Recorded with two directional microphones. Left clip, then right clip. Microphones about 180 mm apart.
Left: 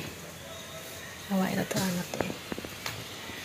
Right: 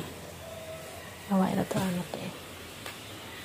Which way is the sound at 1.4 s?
15° right (ahead or behind).